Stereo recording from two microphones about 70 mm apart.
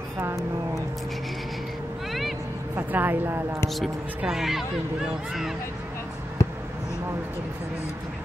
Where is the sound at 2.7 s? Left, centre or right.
Right.